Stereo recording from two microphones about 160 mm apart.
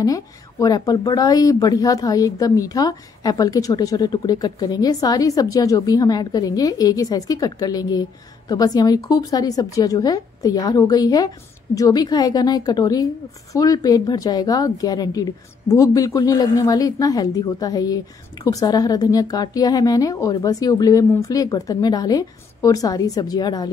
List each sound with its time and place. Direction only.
0.0 s speech: 20° left (ahead or behind)